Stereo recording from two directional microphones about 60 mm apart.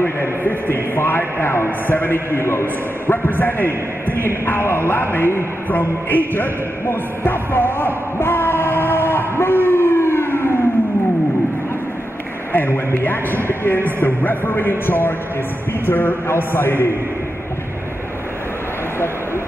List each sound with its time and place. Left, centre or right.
0.0 s a man's voice: left
2.3 s a man's voice: left
12.5 s a man's voice: left